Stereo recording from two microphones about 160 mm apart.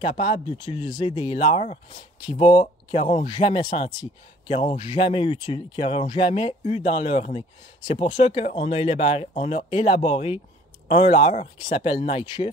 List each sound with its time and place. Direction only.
0.0 s speech: 35° left (ahead or behind)